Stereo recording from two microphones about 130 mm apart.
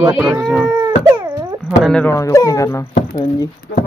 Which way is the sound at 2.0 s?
25° left (ahead or behind).